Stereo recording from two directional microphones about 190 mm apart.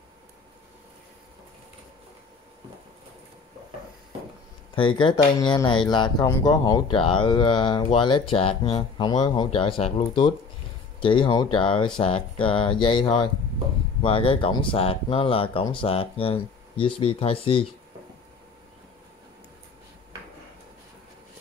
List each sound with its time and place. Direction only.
4.7 s speech: 25° left (ahead or behind)